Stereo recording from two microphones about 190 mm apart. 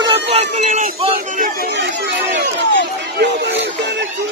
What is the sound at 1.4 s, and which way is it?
Speech, 50° right (ahead or behind).